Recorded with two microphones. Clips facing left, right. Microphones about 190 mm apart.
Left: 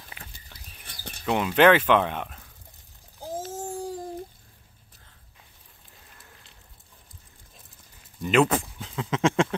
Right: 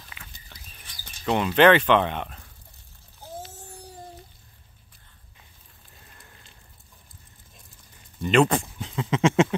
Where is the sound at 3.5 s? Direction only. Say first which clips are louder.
Left 12 dB; 90° left.